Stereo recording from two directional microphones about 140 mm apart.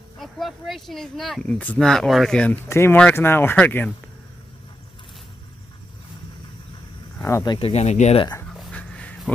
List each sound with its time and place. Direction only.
0.2 s speech: centre (ahead or behind)
2.7 s speech: 15° left (ahead or behind)
7.2 s speech: 20° left (ahead or behind)
7.5 s speech: 45° left (ahead or behind)
8.5 s a sound: 5° left (ahead or behind)